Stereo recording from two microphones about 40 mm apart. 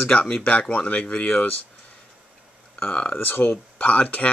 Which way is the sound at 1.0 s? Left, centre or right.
Left.